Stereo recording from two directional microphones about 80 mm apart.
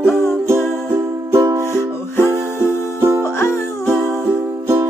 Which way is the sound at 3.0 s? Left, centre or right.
Right.